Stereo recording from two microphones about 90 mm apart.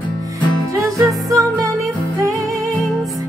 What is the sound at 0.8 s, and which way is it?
Music, 40° right (ahead or behind).